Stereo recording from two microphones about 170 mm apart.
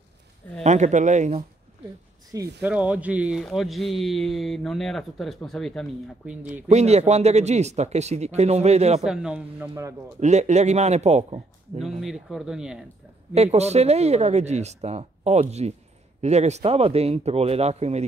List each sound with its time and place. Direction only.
0.7 s speech: 45° right (ahead or behind)
2.3 s speech: 20° right (ahead or behind)
2.7 s speech: 10° right (ahead or behind)
6.2 s speech: 10° right (ahead or behind)
6.7 s speech: 40° right (ahead or behind)
9.0 s speech: 5° right (ahead or behind)
10.2 s speech: 40° right (ahead or behind)
12.0 s speech: centre (ahead or behind)
13.3 s speech: 40° right (ahead or behind)